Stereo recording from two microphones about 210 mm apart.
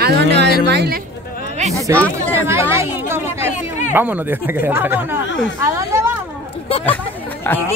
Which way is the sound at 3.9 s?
10° right (ahead or behind).